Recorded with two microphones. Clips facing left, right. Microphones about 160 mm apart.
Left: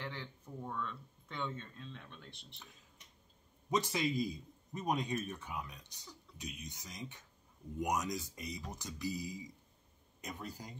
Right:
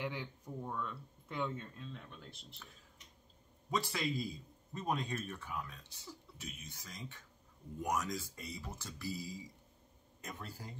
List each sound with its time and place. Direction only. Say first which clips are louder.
0.0 s speech: right 4 dB; 10° right (ahead or behind)
3.7 s a man's voice: left 3 dB; 20° left (ahead or behind)